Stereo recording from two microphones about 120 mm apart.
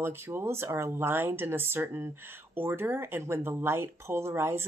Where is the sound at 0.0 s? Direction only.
20° right (ahead or behind).